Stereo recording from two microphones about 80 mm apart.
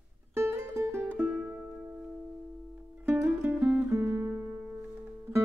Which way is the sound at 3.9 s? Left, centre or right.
Right.